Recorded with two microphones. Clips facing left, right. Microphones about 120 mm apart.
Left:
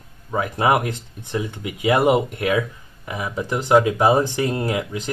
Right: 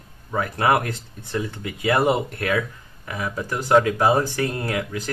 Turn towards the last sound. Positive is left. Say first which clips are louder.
# left 2 dB
turn(degrees=20)  # may be behind; listen again after turning